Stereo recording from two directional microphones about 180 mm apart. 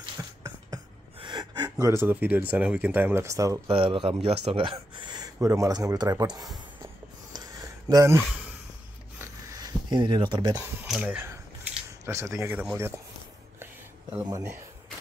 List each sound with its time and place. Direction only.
0.2 s a sound: 20° right (ahead or behind)
1.2 s gasp: 25° right (ahead or behind)
2.5 s speech: 5° right (ahead or behind)
3.6 s speech: 30° right (ahead or behind)
7.3 s a sound: 20° right (ahead or behind)
9.2 s zipper: 20° right (ahead or behind)
10.6 s speech: 10° right (ahead or behind)
14.2 s speech: 15° right (ahead or behind)